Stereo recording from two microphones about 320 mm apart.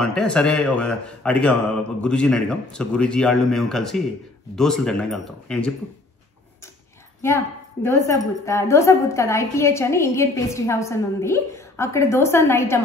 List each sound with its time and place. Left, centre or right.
0.0 s speech: centre
7.2 s a woman's voice: centre